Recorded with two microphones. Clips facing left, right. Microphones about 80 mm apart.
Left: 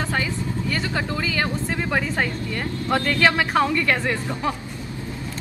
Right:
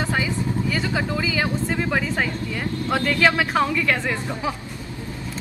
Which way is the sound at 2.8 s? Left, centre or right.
Centre.